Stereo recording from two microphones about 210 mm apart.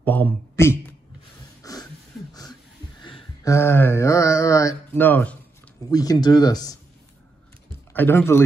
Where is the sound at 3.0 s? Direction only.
25° left (ahead or behind).